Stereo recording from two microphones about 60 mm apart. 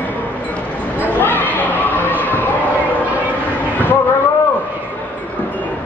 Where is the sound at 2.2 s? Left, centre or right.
Left.